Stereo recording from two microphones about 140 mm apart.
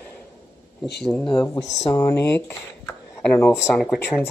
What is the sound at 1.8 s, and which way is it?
Speech, 20° left (ahead or behind).